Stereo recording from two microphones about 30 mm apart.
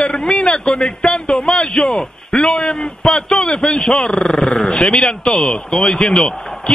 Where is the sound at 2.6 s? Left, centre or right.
Centre.